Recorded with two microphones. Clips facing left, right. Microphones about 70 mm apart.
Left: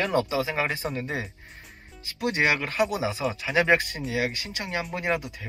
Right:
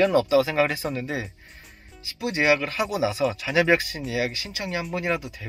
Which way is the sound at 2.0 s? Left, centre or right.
Left.